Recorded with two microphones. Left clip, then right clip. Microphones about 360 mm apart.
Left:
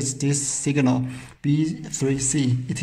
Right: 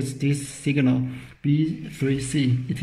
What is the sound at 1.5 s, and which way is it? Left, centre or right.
Speech, left.